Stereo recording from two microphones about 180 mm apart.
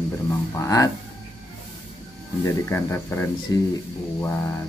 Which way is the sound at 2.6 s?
15° left (ahead or behind).